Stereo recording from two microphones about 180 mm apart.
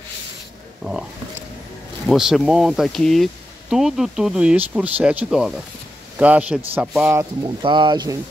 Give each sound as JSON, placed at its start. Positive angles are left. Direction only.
{"t": 2.0, "sound": "a man's voice", "side_deg": 0}
{"t": 7.6, "sound": "speech", "side_deg": -25}